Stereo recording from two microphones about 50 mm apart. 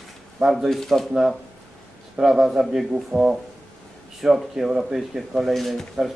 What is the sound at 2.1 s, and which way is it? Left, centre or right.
Speech, centre.